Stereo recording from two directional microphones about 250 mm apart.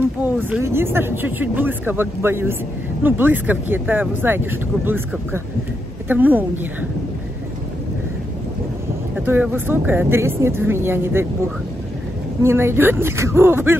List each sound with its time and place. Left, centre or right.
0.2 s speech: centre
9.2 s speech: centre
12.4 s speech: centre